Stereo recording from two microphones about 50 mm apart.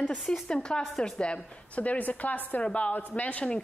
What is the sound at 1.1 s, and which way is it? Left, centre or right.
A woman's voice, left.